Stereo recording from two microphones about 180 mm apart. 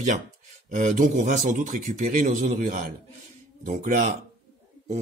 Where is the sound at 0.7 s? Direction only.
45° right (ahead or behind).